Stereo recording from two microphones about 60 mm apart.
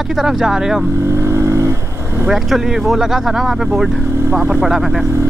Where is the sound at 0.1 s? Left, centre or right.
Centre.